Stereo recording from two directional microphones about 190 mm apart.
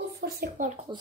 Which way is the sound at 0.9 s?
25° right (ahead or behind).